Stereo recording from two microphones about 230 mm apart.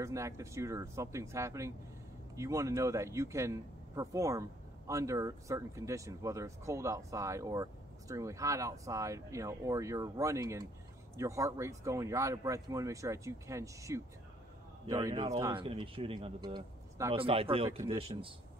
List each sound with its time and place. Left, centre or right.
0.0 s speech: centre